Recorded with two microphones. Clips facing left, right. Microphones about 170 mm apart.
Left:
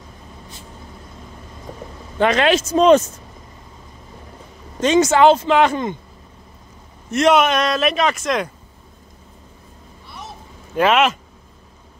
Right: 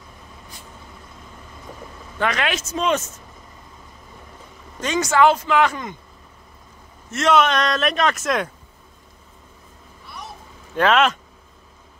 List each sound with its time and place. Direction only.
2.1 s speech: 25° left (ahead or behind)
4.7 s speech: 25° left (ahead or behind)
7.1 s speech: 15° left (ahead or behind); by 8.5 s centre (ahead or behind)
10.8 s speech: 5° left (ahead or behind)